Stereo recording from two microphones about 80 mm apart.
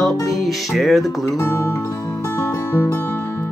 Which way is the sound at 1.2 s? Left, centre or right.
Left.